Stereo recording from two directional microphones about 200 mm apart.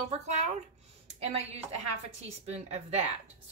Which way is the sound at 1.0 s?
30° right (ahead or behind).